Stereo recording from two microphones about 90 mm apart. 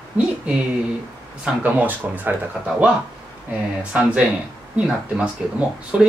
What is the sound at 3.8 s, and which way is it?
Speech, 15° right (ahead or behind).